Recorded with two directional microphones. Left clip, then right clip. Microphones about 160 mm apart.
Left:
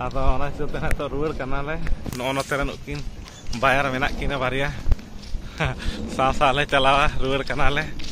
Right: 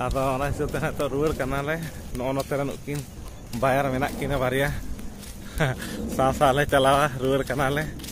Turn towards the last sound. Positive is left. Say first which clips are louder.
# left 1 dB
turn(degrees=-30)  # may be behind; listen again after turning